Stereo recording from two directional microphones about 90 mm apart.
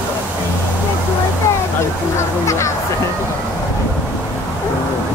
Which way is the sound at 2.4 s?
35° left (ahead or behind).